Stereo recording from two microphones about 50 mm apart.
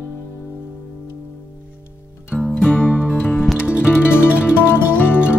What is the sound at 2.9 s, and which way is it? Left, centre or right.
Music, centre.